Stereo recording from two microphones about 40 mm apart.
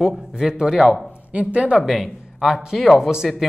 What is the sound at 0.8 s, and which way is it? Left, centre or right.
Speech, centre.